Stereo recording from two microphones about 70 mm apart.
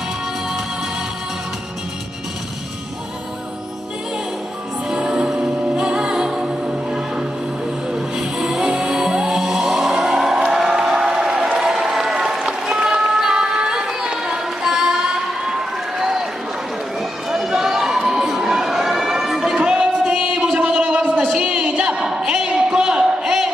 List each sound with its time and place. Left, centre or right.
4.8 s music: centre
16.0 s run: centre
17.3 s crowd: centre
19.6 s singing: centre
20.5 s a sound: centre